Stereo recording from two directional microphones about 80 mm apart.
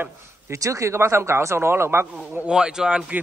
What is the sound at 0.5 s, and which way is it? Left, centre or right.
Speech, right.